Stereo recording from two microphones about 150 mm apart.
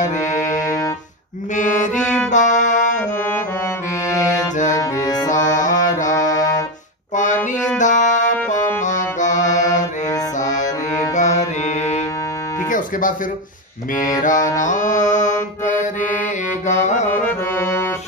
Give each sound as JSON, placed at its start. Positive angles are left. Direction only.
{"t": 0.4, "sound": "music", "side_deg": 20}
{"t": 1.5, "sound": "music", "side_deg": 55}
{"t": 4.7, "sound": "music", "side_deg": 25}
{"t": 5.4, "sound": "music", "side_deg": 55}
{"t": 6.3, "sound": "brass instrument", "side_deg": 25}
{"t": 7.8, "sound": "music", "side_deg": 55}
{"t": 11.1, "sound": "music", "side_deg": 50}
{"t": 12.6, "sound": "music", "side_deg": 60}
{"t": 14.2, "sound": "music", "side_deg": 60}
{"t": 14.6, "sound": "mantra", "side_deg": 55}
{"t": 16.8, "sound": "music", "side_deg": 50}
{"t": 17.1, "sound": "music", "side_deg": 15}